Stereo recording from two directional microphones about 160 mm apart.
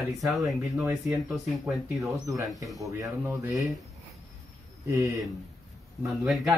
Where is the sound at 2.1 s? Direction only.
20° right (ahead or behind).